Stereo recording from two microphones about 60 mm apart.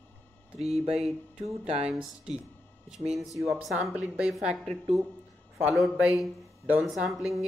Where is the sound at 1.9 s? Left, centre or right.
Centre.